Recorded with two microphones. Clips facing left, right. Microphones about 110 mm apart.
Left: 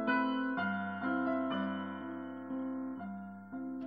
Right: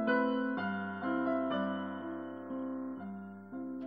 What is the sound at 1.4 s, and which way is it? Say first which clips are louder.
Music: right 2 dB; 35° right (ahead or behind).